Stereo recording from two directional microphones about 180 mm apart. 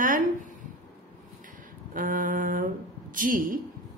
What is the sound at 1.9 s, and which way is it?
Speech, 50° right (ahead or behind).